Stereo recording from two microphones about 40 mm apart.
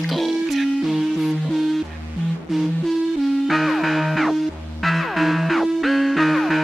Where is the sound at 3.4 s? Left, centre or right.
Centre.